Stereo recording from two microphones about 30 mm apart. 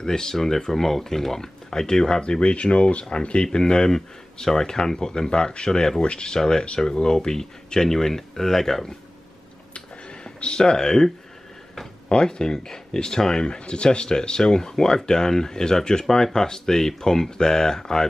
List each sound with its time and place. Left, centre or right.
0.0 s speech: left
2.4 s speech: left
3.5 s speech: left
9.8 s a sound: left
12.1 s speech: left